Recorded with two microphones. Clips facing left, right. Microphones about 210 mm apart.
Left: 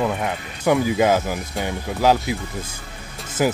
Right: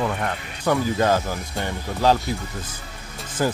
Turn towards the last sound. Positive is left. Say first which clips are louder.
# left 3 dB
turn(degrees=5)  # may be behind; listen again after turning